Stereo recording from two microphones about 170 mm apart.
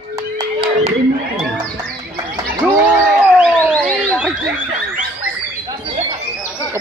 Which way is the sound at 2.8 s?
15° right (ahead or behind).